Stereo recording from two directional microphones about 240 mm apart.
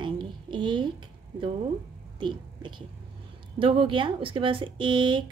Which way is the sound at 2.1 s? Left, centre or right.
Centre.